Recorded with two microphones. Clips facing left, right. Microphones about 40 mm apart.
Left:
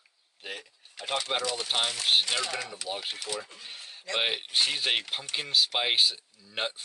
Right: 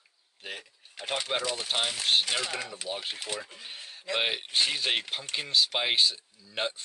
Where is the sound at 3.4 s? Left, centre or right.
Centre.